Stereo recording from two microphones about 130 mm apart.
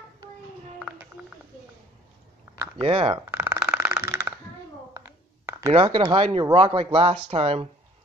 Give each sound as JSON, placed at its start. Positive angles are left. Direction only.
{"t": 2.8, "sound": "speech", "side_deg": -45}
{"t": 3.3, "sound": "a sound", "side_deg": -20}
{"t": 5.7, "sound": "speech", "side_deg": -35}